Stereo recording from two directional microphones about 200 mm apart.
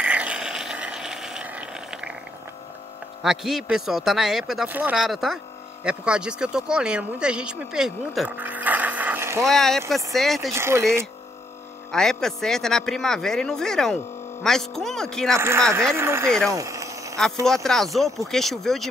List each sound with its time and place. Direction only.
0.0 s a sound: 5° right (ahead or behind)
3.2 s speech: centre (ahead or behind)
9.4 s speech: centre (ahead or behind)
10.5 s speech: 15° right (ahead or behind)
11.9 s speech: centre (ahead or behind)
15.3 s speech: 15° right (ahead or behind)
16.4 s a sound: 15° right (ahead or behind)
17.5 s speech: centre (ahead or behind)